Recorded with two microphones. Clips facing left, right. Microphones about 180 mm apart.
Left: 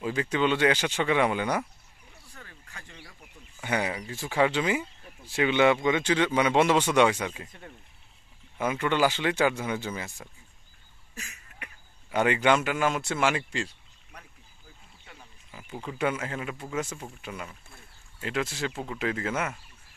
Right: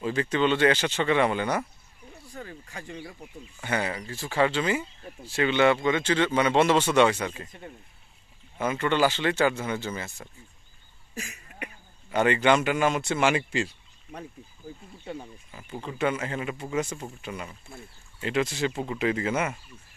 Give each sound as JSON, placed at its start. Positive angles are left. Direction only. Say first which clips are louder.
{"t": 0.0, "sound": "speech", "louder": "right 2 dB", "side_deg": 5}
{"t": 2.3, "sound": "a sound", "louder": "right 10 dB", "side_deg": -20}
{"t": 3.6, "sound": "speech", "louder": "even", "side_deg": 15}
{"t": 8.5, "sound": "speech", "louder": "right 1 dB", "side_deg": 10}
{"t": 11.1, "sound": "cough", "louder": "right 7 dB", "side_deg": -15}
{"t": 12.1, "sound": "speech", "louder": "right 2 dB", "side_deg": 5}
{"t": 15.1, "sound": "speech", "louder": "right 16 dB", "side_deg": -30}
{"t": 15.5, "sound": "speech", "louder": "right 1 dB", "side_deg": 5}